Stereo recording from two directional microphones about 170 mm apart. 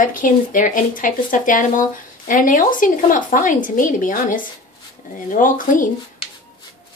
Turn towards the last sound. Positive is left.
turn(degrees=50)  # may be behind; listen again after turning